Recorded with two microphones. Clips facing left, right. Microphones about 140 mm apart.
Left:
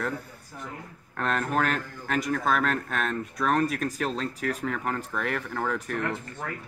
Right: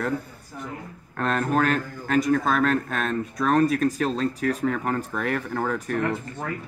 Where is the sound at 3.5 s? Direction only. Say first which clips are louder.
Right 7 dB; 30° right (ahead or behind).